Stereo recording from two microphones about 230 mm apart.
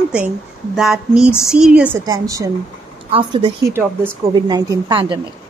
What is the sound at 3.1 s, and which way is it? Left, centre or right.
Speech, right.